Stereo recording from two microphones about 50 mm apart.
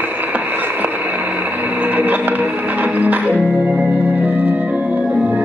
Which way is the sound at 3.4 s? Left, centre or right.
Right.